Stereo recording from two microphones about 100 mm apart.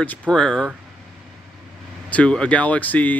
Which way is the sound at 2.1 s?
10° left (ahead or behind).